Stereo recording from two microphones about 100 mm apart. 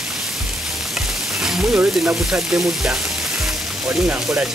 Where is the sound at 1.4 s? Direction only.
5° right (ahead or behind).